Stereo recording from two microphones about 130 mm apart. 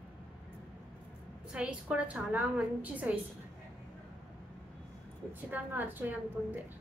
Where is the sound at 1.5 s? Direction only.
5° right (ahead or behind).